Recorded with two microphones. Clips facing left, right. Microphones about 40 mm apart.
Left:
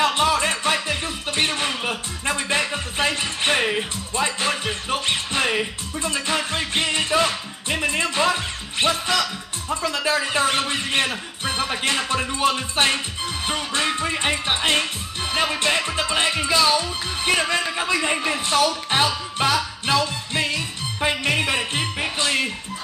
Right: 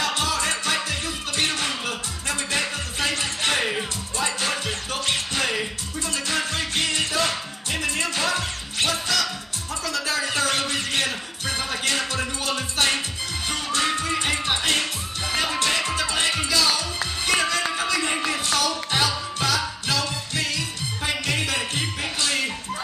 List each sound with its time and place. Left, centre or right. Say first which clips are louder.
0.0 s music: left 5 dB; left